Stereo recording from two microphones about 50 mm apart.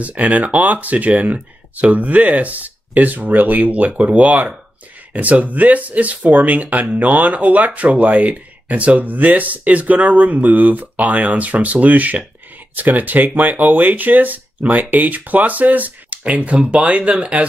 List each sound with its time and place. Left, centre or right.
0.0 s speech: right